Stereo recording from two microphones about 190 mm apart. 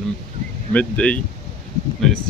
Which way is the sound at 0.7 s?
5° left (ahead or behind).